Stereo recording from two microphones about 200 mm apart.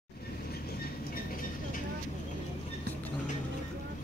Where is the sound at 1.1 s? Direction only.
45° left (ahead or behind).